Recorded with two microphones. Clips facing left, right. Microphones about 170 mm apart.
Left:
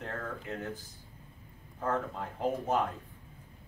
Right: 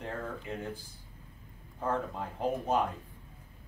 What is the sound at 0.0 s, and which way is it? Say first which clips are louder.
Speech: right 1 dB; 10° right (ahead or behind).